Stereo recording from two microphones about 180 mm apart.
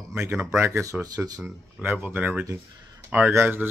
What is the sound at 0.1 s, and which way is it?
Speech, 10° right (ahead or behind).